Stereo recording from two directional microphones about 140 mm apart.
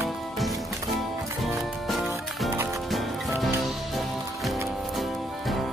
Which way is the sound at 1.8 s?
Centre (ahead or behind).